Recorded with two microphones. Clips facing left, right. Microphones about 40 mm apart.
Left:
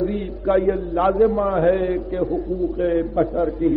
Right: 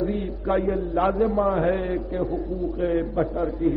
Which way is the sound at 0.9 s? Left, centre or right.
Centre.